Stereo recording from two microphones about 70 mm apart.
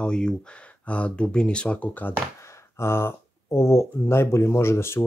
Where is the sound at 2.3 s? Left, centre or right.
Left.